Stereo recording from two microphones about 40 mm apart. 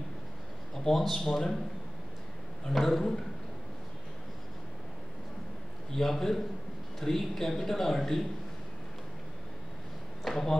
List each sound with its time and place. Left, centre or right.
0.7 s a man's voice: centre
2.7 s a man's voice: centre
5.9 s a man's voice: centre
10.3 s a man's voice: centre